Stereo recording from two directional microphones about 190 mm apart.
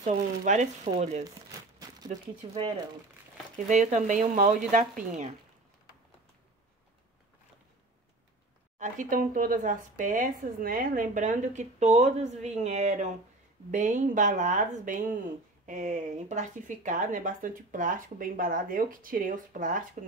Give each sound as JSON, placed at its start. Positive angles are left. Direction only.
{"t": 0.0, "sound": "speech", "side_deg": -35}
{"t": 2.6, "sound": "speech", "side_deg": -25}
{"t": 3.5, "sound": "speech", "side_deg": -40}
{"t": 8.7, "sound": "speech", "side_deg": -40}